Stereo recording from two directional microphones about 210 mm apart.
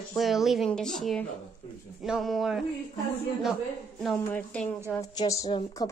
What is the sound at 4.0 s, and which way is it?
Speech, 5° left (ahead or behind).